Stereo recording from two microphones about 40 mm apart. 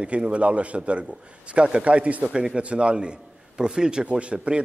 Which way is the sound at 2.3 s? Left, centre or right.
Right.